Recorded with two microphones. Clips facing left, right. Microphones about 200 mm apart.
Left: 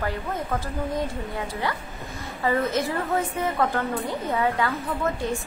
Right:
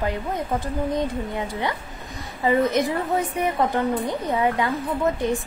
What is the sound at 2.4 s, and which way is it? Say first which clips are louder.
A woman's voice: right 4 dB; 20° right (ahead or behind).